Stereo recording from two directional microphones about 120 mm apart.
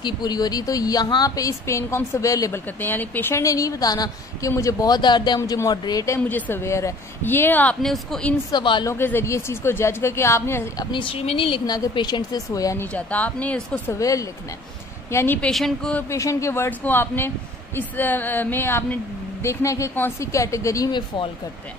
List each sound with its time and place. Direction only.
0.0 s a woman's voice: 35° left (ahead or behind)
2.8 s a woman's voice: 15° left (ahead or behind)
6.2 s a woman's voice: 15° left (ahead or behind)
7.8 s speech: 5° left (ahead or behind)
8.5 s a woman's voice: 40° left (ahead or behind)
8.8 s a woman's voice: 20° left (ahead or behind)
10.8 s a woman's voice: 45° left (ahead or behind)
11.6 s a woman's voice: 35° left (ahead or behind)
12.9 s a woman's voice: 15° left (ahead or behind)
13.9 s a woman's voice: 25° left (ahead or behind)
15.5 s speech: 5° left (ahead or behind)
16.1 s a woman's voice: 25° left (ahead or behind)